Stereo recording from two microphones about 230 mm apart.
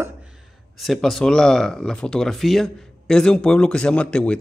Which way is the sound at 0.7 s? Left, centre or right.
Centre.